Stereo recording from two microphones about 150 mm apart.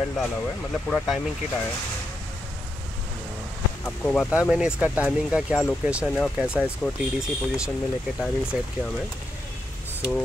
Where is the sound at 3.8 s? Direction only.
10° left (ahead or behind).